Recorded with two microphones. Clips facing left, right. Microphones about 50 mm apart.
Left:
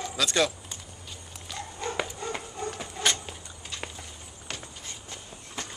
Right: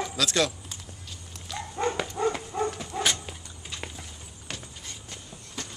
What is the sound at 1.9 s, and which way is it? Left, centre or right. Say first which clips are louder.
Dog: right 5 dB; centre.